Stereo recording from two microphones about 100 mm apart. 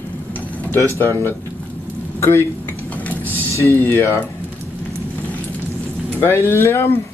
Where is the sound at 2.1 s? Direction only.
25° left (ahead or behind).